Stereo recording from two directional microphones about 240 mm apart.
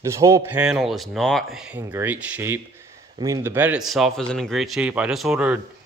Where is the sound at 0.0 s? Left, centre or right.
Centre.